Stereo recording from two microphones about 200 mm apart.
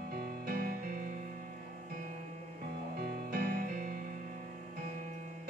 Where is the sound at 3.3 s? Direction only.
45° right (ahead or behind).